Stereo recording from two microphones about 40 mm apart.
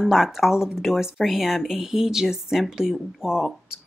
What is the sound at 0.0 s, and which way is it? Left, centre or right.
Speech, centre.